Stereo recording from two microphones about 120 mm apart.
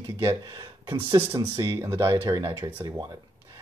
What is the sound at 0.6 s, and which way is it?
Speech, 45° right (ahead or behind).